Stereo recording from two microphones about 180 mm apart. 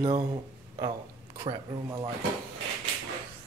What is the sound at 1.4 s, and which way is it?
Speech, 25° right (ahead or behind).